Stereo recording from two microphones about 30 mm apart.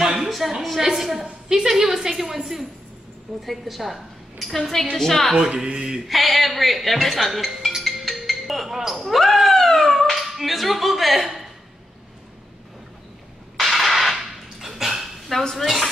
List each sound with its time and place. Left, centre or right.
0.3 s a woman's voice: centre
1.2 s a woman's voice: centre
4.9 s a woman's voice: centre
5.3 s speech: right
6.0 s a woman's voice: centre
7.8 s music: centre
9.1 s cat: centre
10.1 s speech: centre
13.6 s a sound: centre
14.1 s dog: centre
15.6 s a woman's voice: centre